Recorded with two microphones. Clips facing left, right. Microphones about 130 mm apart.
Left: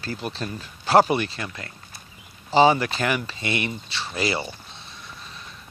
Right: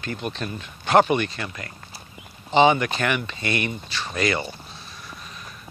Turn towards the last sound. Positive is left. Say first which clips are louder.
# right 2 dB
turn(degrees=30)  # may be behind; listen again after turning